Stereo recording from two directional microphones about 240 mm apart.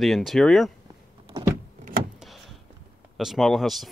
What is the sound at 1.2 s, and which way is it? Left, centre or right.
Power windows, centre.